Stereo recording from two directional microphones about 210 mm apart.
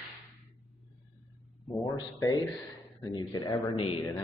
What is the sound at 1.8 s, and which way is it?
Speech, 20° left (ahead or behind).